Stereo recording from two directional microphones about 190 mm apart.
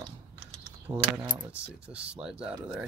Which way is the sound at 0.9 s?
20° right (ahead or behind).